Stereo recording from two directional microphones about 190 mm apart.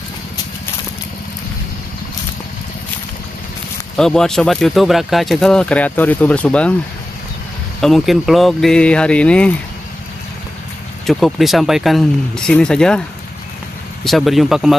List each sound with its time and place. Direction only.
3.9 s speech: 5° left (ahead or behind)
7.8 s speech: centre (ahead or behind)
11.1 s speech: centre (ahead or behind)
14.0 s speech: centre (ahead or behind)